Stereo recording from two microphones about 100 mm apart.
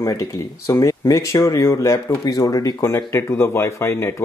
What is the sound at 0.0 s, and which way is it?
Speech, 35° left (ahead or behind).